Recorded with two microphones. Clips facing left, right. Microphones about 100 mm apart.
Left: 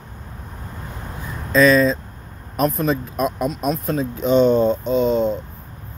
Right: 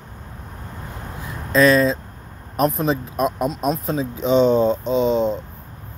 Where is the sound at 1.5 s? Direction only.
50° right (ahead or behind).